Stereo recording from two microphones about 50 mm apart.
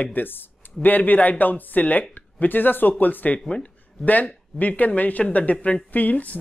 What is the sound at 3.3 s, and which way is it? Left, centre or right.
Speech, centre.